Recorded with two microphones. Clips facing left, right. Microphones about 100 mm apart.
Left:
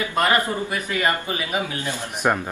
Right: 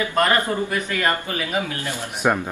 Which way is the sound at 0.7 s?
15° left (ahead or behind).